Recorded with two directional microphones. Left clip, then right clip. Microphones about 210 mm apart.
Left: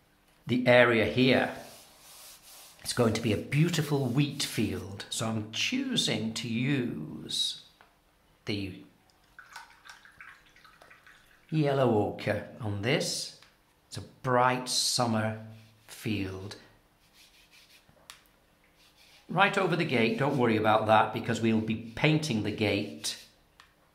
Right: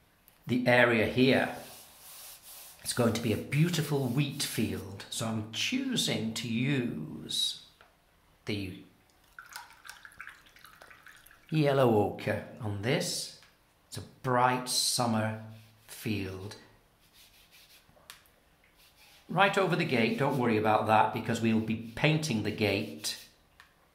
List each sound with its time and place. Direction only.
0.5 s speech: 15° left (ahead or behind)
2.8 s a man's voice: 15° left (ahead or behind)
9.4 s drip: 30° right (ahead or behind)
11.5 s speech: 5° right (ahead or behind)
12.2 s speech: 10° left (ahead or behind)
19.3 s speech: 10° left (ahead or behind)